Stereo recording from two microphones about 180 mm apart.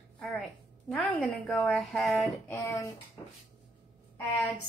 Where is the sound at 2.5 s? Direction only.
15° left (ahead or behind).